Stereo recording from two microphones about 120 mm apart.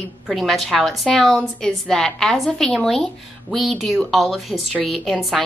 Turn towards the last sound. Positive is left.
turn(degrees=0)  # may be behind; listen again after turning